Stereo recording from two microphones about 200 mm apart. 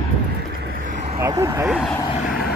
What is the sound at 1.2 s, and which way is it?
Speech, 15° right (ahead or behind).